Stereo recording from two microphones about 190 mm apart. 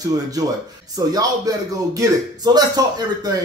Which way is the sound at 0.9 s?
20° right (ahead or behind).